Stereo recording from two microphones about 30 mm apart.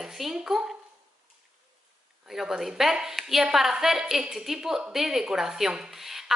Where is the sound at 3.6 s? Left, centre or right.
Centre.